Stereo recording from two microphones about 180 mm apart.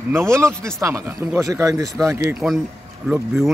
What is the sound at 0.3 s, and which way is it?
Speech, 15° right (ahead or behind).